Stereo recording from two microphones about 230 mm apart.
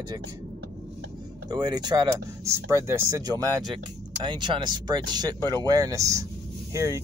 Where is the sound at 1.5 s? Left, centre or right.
Centre.